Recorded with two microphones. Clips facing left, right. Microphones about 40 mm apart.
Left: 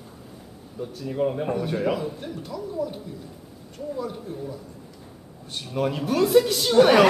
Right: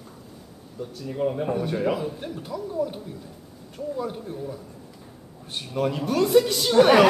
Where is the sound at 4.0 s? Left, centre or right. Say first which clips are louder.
Even; centre.